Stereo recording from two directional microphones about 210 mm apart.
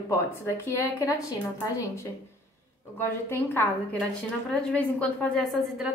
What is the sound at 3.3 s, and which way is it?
A woman's voice, 10° left (ahead or behind).